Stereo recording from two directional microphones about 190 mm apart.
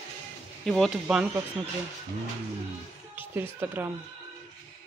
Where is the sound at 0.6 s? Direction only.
Centre (ahead or behind).